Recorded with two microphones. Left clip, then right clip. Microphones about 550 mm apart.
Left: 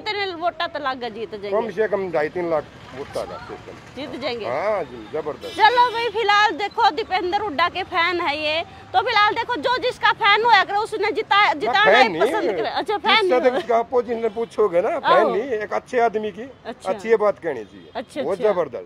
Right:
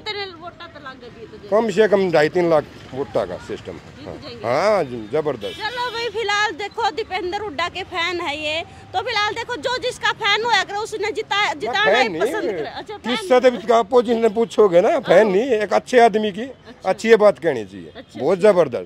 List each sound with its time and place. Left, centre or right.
0.4 s speech: left
1.5 s speech: right
4.5 s speech: right
5.9 s speech: centre; by 13.3 s left
13.3 s speech: right
14.6 s speech: right